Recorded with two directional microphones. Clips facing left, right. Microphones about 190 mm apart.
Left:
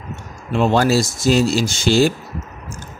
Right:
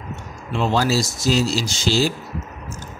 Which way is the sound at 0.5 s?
55° left (ahead or behind).